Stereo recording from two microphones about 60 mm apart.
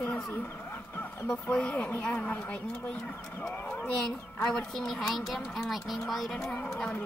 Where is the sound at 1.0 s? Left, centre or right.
Left.